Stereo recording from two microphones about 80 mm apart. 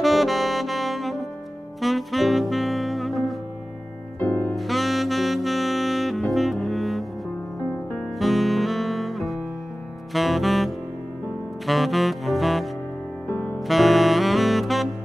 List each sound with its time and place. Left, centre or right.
0.0 s saxophone: centre
4.2 s music: left
4.6 s saxophone: centre
8.2 s music: centre
10.1 s saxophone: centre
13.3 s music: left
13.6 s saxophone: centre